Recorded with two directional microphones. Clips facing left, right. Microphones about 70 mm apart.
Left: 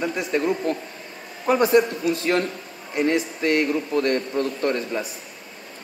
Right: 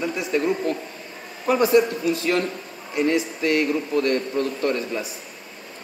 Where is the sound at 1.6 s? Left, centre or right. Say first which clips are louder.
Right 1 dB; left.